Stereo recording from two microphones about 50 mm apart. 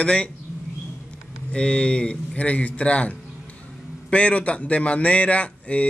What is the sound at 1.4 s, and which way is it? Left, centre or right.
A man's voice, centre.